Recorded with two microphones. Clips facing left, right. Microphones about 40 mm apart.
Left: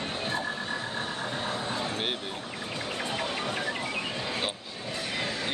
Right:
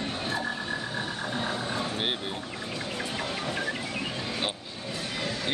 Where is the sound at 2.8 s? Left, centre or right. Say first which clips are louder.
Left 2 dB; centre.